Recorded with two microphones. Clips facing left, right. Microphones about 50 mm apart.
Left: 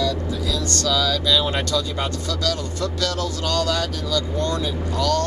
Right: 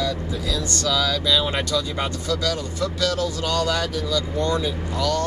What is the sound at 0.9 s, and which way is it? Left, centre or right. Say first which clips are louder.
Speech: left 1 dB; centre.